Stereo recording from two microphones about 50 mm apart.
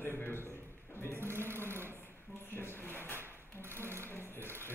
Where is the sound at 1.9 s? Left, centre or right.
Left.